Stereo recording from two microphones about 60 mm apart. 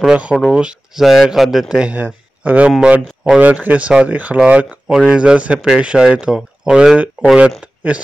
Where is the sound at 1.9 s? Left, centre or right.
Right.